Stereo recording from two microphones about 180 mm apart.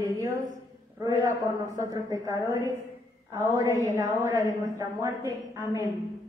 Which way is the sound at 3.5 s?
15° right (ahead or behind).